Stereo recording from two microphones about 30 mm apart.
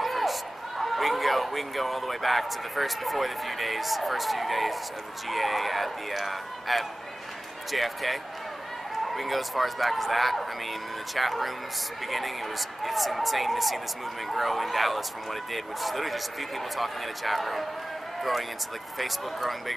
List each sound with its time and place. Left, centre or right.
0.0 s speech: centre
18.9 s speech: centre